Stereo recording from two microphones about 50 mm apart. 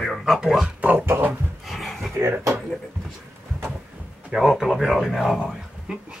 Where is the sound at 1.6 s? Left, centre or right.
Centre.